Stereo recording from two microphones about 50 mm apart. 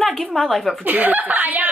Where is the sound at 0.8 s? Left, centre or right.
Right.